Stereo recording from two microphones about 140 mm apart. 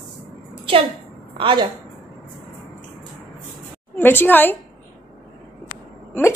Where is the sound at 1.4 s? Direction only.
35° right (ahead or behind).